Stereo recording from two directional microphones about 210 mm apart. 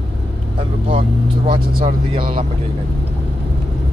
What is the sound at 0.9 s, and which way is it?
Speech, 25° right (ahead or behind).